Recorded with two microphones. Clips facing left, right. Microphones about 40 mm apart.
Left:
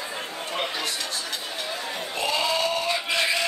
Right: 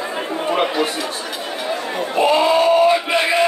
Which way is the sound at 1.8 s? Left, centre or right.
Right.